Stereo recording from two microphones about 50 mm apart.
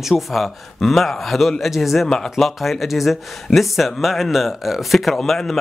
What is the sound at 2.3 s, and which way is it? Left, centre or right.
Speech, centre.